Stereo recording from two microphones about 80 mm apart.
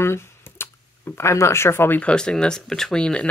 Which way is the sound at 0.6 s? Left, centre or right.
Left.